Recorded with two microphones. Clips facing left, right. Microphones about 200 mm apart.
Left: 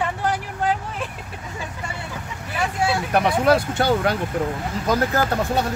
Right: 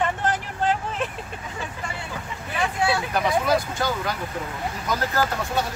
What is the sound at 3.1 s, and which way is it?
Speech, 70° left (ahead or behind).